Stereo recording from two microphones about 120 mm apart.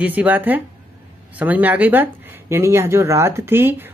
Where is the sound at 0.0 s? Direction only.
15° right (ahead or behind).